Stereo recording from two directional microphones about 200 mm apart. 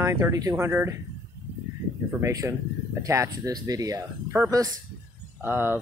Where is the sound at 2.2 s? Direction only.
15° right (ahead or behind).